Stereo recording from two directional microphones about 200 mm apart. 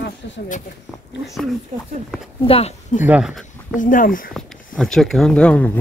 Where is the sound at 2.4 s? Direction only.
30° left (ahead or behind).